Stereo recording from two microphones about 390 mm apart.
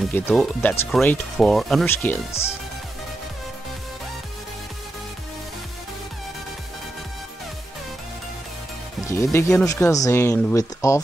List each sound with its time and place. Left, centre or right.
0.0 s speech: centre
9.1 s speech: centre